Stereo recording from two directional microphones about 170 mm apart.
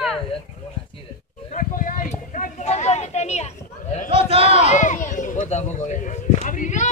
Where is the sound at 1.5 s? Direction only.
55° left (ahead or behind).